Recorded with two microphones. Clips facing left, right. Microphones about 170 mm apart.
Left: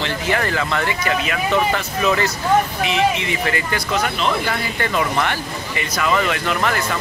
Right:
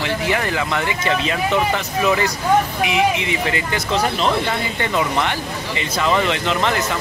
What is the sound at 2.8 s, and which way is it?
Speech, 15° right (ahead or behind).